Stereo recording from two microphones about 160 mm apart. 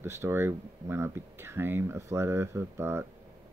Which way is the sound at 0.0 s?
15° right (ahead or behind).